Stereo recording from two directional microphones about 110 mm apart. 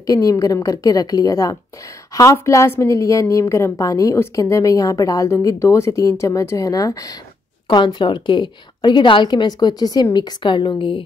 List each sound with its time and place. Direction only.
0.0 s a woman's voice: 30° left (ahead or behind)
7.6 s a woman's voice: 45° left (ahead or behind)